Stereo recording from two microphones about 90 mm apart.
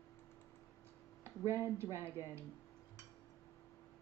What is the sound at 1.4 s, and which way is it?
Speech, 30° right (ahead or behind).